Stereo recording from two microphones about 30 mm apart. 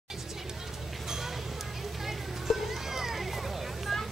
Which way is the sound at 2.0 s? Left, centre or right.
Centre.